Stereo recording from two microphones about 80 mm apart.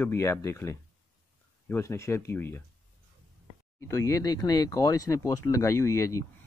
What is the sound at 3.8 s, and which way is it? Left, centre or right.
Speech, left.